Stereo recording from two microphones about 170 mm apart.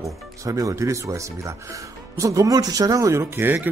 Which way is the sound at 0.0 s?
20° right (ahead or behind).